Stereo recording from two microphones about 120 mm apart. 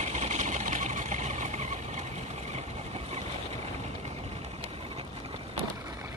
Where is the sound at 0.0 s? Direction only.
70° right (ahead or behind); by 5.5 s 50° right (ahead or behind).